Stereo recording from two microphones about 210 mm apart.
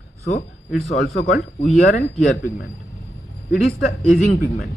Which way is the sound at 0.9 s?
50° left (ahead or behind).